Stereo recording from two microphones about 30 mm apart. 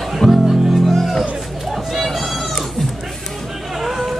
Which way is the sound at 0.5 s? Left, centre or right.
Centre.